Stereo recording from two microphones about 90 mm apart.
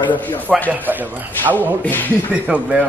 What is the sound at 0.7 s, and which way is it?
Speech, 20° right (ahead or behind).